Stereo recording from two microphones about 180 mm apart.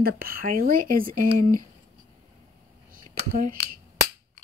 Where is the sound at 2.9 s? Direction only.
50° right (ahead or behind).